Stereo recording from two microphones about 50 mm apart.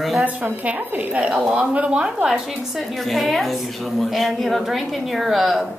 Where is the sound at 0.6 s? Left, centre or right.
Right.